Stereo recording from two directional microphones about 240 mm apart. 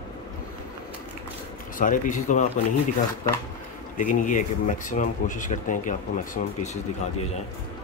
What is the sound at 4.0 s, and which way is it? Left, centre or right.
Speech, left.